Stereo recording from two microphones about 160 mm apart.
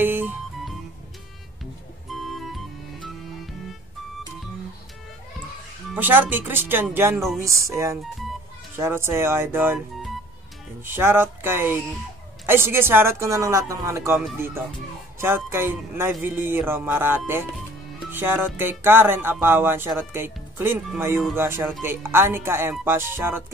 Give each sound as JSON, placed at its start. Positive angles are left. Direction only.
{"t": 0.0, "sound": "music", "side_deg": -10}
{"t": 2.1, "sound": "music", "side_deg": 0}
{"t": 5.9, "sound": "a man's voice", "side_deg": -10}
{"t": 10.8, "sound": "a man's voice", "side_deg": -15}